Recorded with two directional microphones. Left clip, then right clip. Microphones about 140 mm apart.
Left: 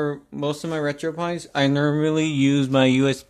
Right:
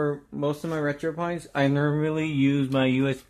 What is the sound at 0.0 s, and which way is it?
Speech, 25° left (ahead or behind).